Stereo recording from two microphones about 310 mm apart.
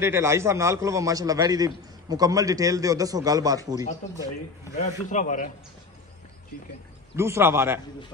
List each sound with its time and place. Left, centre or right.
0.0 s a man's voice: centre
4.8 s a man's voice: left
7.2 s a man's voice: centre